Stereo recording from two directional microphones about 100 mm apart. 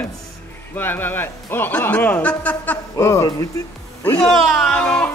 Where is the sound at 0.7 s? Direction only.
20° left (ahead or behind).